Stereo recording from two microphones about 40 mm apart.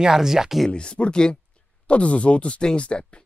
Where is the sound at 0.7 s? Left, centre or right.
Left.